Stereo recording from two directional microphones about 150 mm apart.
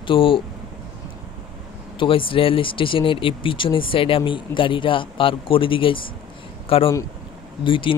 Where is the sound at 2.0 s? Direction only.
35° left (ahead or behind).